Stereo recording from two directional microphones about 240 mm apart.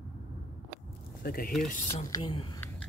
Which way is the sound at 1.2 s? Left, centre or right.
Left.